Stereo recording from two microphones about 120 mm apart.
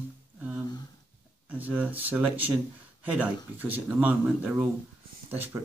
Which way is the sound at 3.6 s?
15° right (ahead or behind).